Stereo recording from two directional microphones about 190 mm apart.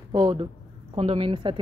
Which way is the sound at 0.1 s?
25° right (ahead or behind).